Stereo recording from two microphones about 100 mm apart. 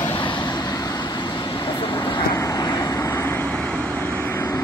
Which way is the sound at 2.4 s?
40° left (ahead or behind).